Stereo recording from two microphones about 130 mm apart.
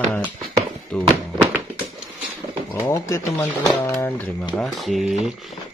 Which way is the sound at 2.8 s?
25° left (ahead or behind).